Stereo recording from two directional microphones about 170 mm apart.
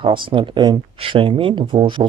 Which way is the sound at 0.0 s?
30° right (ahead or behind).